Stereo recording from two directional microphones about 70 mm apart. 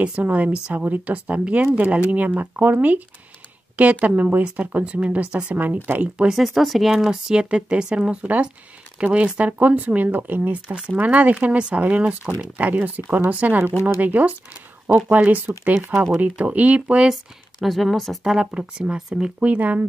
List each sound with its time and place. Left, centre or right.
0.0 s a woman's voice: centre
6.4 s a woman's voice: centre
17.6 s speech: centre
18.2 s a woman's voice: centre
19.4 s speech: right